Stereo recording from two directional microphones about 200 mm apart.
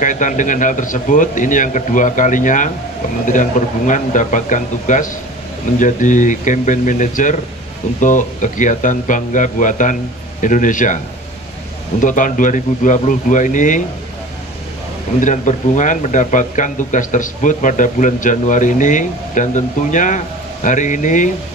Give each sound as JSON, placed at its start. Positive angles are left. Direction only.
{"t": 0.0, "sound": "speech", "side_deg": 40}
{"t": 12.0, "sound": "speech", "side_deg": 40}
{"t": 15.1, "sound": "speech", "side_deg": 40}